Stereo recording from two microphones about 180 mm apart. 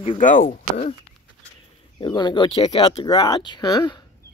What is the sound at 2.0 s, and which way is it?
Speech, 25° left (ahead or behind).